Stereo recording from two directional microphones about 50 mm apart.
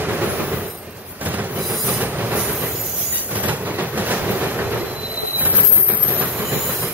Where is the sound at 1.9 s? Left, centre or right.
Right.